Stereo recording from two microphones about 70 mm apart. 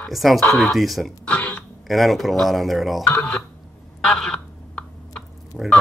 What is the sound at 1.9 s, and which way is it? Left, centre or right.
Speech, centre.